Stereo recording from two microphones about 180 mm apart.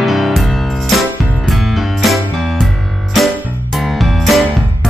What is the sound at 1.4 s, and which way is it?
Music, centre (ahead or behind).